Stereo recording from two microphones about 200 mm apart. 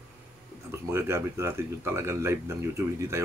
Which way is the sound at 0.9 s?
15° right (ahead or behind).